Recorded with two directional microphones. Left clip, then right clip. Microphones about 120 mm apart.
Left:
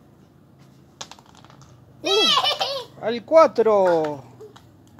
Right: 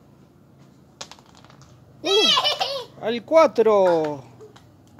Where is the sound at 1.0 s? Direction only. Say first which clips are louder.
Left 1 dB; 15° left (ahead or behind).